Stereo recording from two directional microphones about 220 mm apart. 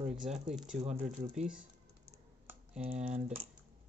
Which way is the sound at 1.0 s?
35° right (ahead or behind).